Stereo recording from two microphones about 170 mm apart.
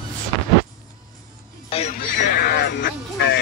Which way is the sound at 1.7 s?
40° left (ahead or behind).